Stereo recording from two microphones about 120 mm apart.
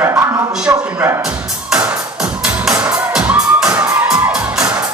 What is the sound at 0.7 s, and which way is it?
Speech, 20° right (ahead or behind).